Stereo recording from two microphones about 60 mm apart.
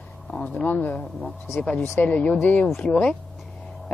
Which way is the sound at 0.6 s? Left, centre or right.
Left.